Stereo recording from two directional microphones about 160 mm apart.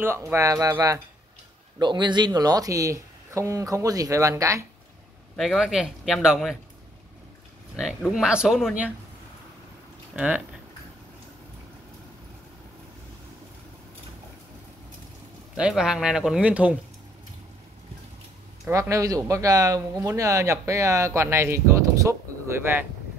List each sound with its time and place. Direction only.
0.0 s speech: 15° right (ahead or behind)
5.3 s speech: centre (ahead or behind)
8.1 s speech: 5° right (ahead or behind)
10.1 s speech: 5° right (ahead or behind)
15.5 s speech: 5° right (ahead or behind)
18.7 s speech: 20° right (ahead or behind)